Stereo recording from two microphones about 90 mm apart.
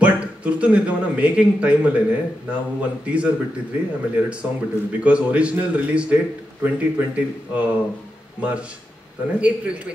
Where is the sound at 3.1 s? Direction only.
15° right (ahead or behind).